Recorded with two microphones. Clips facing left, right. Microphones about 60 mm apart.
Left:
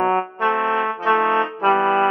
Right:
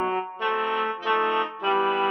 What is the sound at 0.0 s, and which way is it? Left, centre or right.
Brass instrument, left.